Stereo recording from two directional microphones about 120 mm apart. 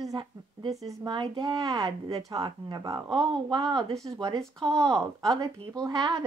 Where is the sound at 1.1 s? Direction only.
40° right (ahead or behind).